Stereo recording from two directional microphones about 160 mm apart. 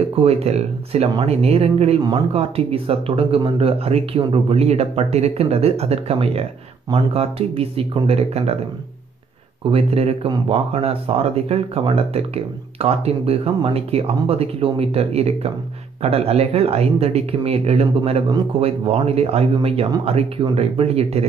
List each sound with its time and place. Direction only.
0.1 s speech: 40° right (ahead or behind)
2.0 s speech: 25° right (ahead or behind)
2.3 s speech: 40° right (ahead or behind)
9.7 s speech: 40° right (ahead or behind)